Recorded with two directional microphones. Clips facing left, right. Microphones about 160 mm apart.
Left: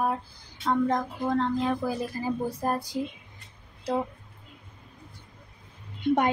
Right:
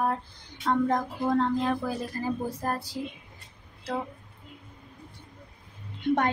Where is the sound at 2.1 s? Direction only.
10° left (ahead or behind).